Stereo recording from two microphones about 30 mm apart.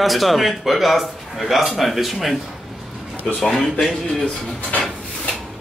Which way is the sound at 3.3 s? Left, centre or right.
Centre.